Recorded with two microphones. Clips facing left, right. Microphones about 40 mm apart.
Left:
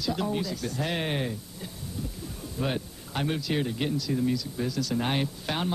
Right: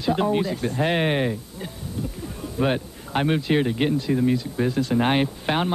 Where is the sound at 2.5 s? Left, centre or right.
Right.